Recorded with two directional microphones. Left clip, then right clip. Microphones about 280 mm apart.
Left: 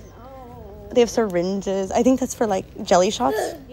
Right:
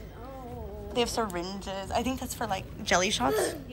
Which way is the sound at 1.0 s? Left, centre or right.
Left.